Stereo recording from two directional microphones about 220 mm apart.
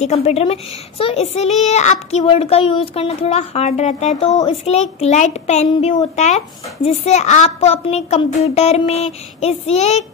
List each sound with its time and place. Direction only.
0.0 s a woman's voice: 30° left (ahead or behind)